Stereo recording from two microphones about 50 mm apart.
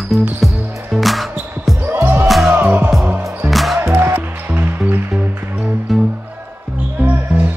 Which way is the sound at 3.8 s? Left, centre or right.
Right.